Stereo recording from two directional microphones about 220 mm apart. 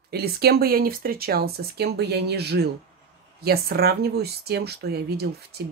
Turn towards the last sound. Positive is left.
turn(degrees=-45)  # may be behind; listen again after turning